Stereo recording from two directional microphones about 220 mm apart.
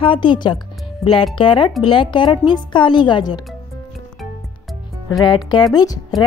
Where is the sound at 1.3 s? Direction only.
20° left (ahead or behind).